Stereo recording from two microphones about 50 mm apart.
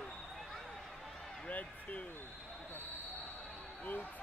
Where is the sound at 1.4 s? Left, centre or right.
Left.